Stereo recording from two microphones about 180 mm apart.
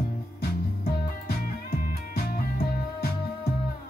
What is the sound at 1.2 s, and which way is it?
Music, 55° left (ahead or behind).